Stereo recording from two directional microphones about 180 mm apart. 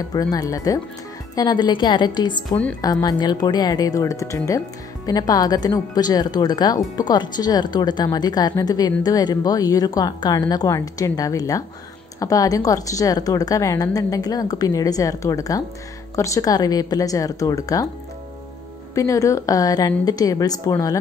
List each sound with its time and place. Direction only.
0.1 s speech: 20° left (ahead or behind)
18.9 s speech: 15° left (ahead or behind)